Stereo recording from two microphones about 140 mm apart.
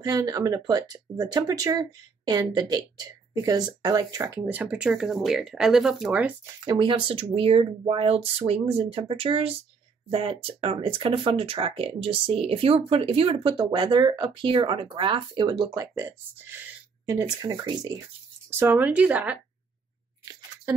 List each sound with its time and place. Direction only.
0.0 s speech: 25° right (ahead or behind)
4.4 s speech: 10° right (ahead or behind)
6.6 s speech: 30° right (ahead or behind)
18.5 s speech: 15° right (ahead or behind)